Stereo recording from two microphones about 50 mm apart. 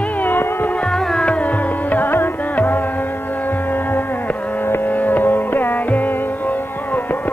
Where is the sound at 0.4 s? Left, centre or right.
Left.